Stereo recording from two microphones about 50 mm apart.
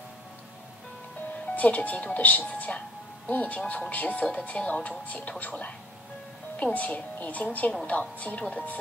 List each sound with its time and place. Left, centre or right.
1.4 s speech: left